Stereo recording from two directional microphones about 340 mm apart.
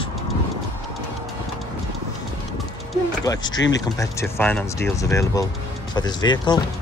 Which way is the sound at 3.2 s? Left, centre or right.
Centre.